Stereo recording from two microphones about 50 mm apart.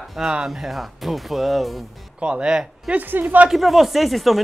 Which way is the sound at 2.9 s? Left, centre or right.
Right.